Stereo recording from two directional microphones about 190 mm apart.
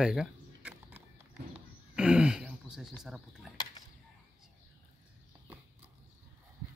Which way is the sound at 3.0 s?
5° right (ahead or behind).